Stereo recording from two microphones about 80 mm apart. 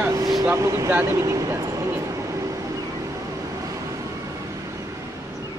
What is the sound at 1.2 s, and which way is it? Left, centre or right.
Speech, right.